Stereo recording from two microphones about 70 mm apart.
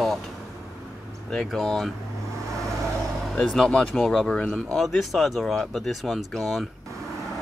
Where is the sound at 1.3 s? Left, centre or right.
Centre.